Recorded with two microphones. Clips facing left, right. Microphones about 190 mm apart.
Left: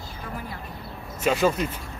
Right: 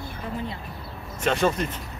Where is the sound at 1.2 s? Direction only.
5° left (ahead or behind).